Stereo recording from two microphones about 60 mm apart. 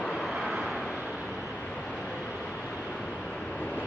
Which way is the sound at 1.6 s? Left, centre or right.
Centre.